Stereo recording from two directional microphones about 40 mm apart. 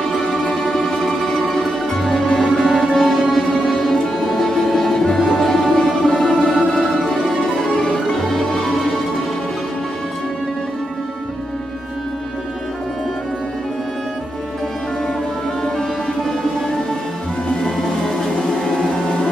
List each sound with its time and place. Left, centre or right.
0.3 s music: centre
17.6 s music: centre